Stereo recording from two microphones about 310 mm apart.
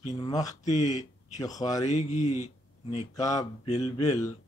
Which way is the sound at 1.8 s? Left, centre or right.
Left.